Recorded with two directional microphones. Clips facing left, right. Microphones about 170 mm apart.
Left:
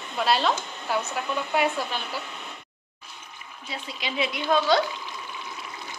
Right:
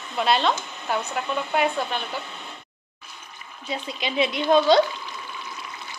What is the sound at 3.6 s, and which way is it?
Speech, 20° right (ahead or behind).